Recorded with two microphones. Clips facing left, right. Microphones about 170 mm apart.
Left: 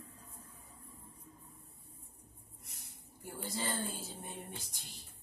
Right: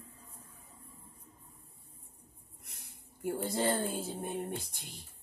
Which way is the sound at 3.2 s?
55° right (ahead or behind).